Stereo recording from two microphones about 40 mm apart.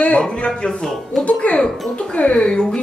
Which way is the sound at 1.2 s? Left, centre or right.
Left.